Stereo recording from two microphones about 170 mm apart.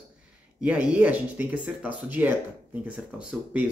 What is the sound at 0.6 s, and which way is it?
Speech, 5° right (ahead or behind).